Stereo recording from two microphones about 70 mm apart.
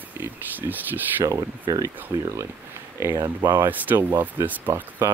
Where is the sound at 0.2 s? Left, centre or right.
Right.